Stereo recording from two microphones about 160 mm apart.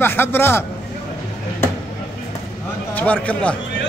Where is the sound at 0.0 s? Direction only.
15° left (ahead or behind).